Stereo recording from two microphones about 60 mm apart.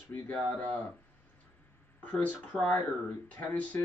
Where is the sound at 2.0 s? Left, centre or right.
Left.